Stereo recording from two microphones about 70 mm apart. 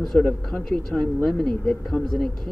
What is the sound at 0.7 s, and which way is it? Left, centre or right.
Speech, centre.